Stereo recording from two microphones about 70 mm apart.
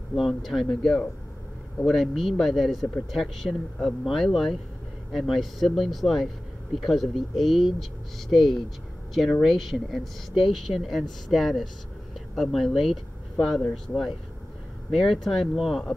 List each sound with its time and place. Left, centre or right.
0.1 s speech: centre